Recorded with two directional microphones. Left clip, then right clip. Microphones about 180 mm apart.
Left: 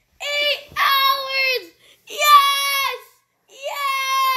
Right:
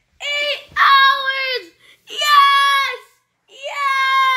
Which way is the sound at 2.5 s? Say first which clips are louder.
Right 6 dB; 20° right (ahead or behind).